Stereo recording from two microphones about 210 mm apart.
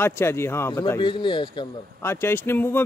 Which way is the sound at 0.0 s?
10° left (ahead or behind).